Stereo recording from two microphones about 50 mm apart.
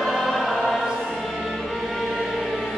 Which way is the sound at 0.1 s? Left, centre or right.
Centre.